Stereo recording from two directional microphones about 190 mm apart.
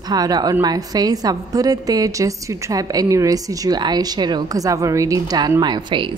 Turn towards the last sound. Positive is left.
turn(degrees=-25)  # may be behind; listen again after turning